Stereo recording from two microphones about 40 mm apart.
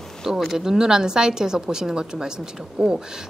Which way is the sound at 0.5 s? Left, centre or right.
Centre.